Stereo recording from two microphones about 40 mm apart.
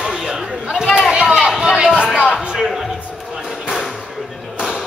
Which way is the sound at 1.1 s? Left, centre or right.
Centre.